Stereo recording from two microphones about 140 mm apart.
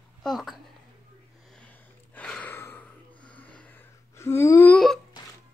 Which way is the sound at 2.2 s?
10° left (ahead or behind).